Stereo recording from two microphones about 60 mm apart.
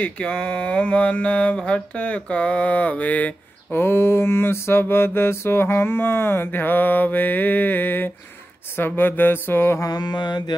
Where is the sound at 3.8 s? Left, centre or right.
Left.